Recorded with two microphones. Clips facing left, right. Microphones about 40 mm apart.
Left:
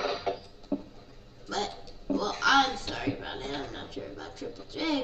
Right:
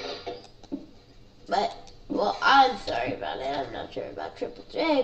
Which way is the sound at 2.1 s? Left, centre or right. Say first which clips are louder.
Right 3 dB; left.